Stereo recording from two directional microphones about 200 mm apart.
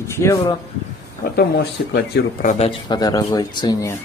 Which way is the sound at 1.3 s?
55° left (ahead or behind).